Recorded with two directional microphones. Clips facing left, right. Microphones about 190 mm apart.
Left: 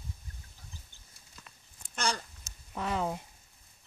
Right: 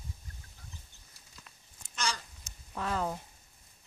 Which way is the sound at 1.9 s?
55° left (ahead or behind).